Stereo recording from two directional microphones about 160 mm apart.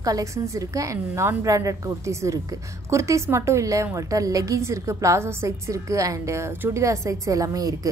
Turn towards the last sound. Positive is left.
turn(degrees=-20)  # may be behind; listen again after turning